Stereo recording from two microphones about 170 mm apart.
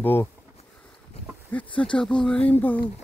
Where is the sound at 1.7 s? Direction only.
5° left (ahead or behind).